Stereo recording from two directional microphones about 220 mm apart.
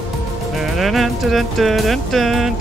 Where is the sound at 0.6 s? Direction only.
Centre (ahead or behind).